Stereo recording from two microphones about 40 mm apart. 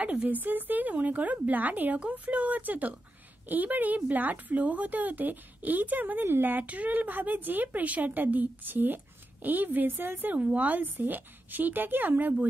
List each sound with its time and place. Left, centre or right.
0.0 s a woman's voice: right
10.3 s speech: right
10.7 s a woman's voice: right